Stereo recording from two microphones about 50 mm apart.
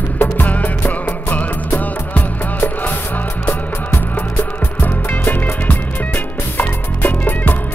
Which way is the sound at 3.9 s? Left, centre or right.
Left.